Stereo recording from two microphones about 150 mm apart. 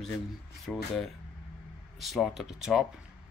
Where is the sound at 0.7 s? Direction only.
5° left (ahead or behind).